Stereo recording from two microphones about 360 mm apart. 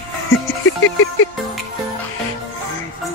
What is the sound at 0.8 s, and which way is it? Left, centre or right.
Music, left.